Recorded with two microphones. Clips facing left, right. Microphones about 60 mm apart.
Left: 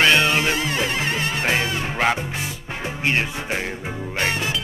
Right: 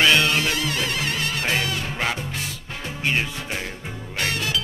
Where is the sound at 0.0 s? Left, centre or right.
Centre.